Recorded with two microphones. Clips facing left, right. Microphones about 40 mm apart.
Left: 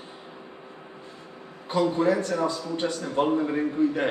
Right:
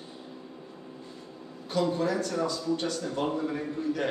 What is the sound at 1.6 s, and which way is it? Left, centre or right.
A man's voice, left.